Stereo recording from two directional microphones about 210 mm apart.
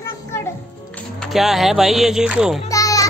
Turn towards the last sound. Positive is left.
turn(degrees=15)  # may be behind; listen again after turning